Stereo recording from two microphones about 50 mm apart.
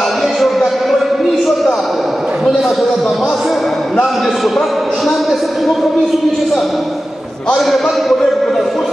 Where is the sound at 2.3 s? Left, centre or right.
Centre.